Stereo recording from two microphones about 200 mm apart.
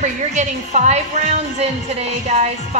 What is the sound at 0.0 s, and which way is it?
A woman's voice, 35° right (ahead or behind).